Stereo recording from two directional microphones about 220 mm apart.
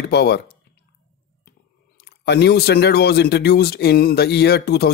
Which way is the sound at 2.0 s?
45° left (ahead or behind).